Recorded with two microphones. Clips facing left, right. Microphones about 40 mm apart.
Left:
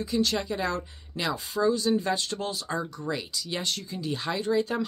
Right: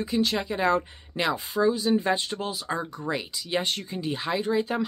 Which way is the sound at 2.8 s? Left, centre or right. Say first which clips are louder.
Right 2 dB; right.